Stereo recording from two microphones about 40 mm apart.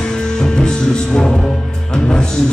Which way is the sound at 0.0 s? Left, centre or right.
Centre.